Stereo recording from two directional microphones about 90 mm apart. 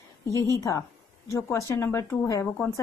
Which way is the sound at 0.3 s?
35° left (ahead or behind).